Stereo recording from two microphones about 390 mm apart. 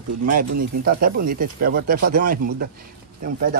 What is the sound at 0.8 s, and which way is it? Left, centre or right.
Speech, right.